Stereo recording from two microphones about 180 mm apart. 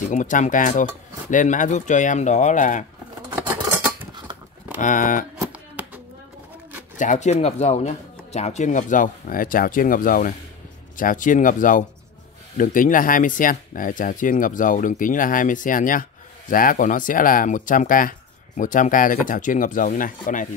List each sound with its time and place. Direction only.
0.1 s speech: 45° left (ahead or behind)
3.3 s scissors: 10° right (ahead or behind)
4.7 s speech: 45° left (ahead or behind)
7.0 s speech: 40° left (ahead or behind)